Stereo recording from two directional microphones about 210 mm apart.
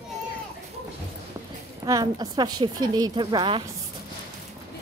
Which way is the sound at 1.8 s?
20° right (ahead or behind).